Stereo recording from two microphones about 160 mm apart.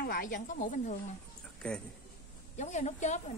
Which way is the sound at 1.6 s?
5° left (ahead or behind).